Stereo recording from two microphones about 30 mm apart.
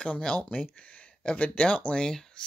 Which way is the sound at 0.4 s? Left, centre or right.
Left.